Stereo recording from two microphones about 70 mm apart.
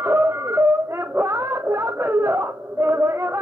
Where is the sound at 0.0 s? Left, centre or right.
Right.